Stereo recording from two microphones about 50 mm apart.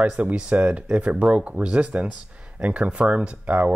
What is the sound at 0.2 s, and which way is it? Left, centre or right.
Speech, right.